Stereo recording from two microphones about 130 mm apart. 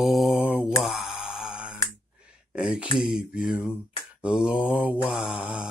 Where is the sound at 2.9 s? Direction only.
10° right (ahead or behind).